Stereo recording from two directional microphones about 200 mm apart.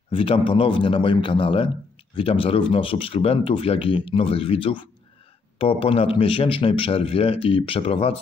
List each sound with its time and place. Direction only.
0.1 s speech: 25° left (ahead or behind)